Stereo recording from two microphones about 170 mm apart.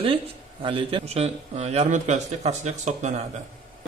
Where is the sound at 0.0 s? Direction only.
30° right (ahead or behind).